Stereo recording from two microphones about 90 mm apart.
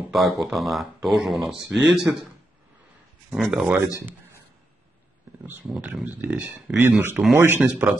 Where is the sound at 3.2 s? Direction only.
Centre (ahead or behind).